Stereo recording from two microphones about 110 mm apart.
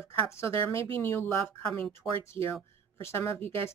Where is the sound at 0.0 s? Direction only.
25° left (ahead or behind).